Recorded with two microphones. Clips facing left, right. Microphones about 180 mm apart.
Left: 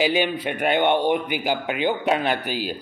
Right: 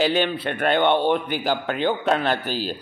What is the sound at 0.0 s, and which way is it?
A man's voice, 10° left (ahead or behind).